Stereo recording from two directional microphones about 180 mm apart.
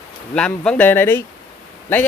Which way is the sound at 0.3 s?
5° left (ahead or behind).